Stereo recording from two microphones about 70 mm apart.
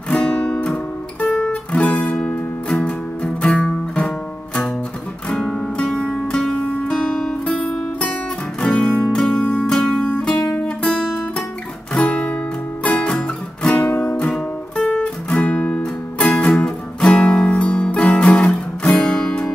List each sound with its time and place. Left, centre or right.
0.1 s music: centre
3.5 s music: centre
5.3 s music: centre
11.9 s guitar: centre
12.8 s music: centre
14.8 s music: left
17.0 s guitar: centre